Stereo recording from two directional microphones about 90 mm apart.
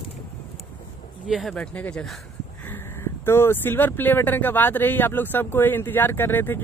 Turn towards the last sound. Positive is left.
turn(degrees=25)  # may be behind; listen again after turning